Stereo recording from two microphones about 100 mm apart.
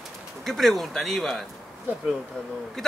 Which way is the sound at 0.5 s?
Centre (ahead or behind).